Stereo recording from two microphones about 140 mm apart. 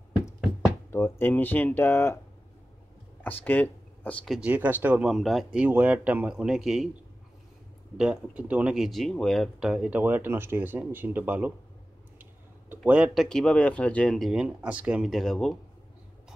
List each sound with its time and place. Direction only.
0.8 s speech: 15° left (ahead or behind)
3.3 s speech: 15° left (ahead or behind)
4.4 s speech: 10° right (ahead or behind)
8.0 s speech: 10° right (ahead or behind)